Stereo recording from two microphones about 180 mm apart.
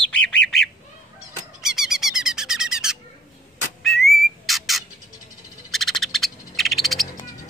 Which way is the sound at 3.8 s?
Centre (ahead or behind).